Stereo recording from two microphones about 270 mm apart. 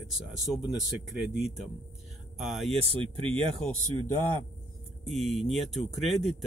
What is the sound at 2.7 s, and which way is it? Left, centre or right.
Speech, right.